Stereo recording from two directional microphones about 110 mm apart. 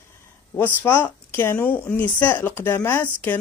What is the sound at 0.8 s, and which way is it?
A woman's voice, 20° left (ahead or behind).